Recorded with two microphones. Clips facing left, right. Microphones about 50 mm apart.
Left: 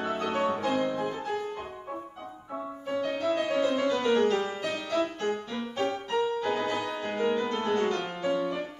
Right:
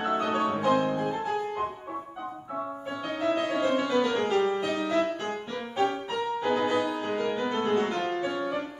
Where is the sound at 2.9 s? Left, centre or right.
Centre.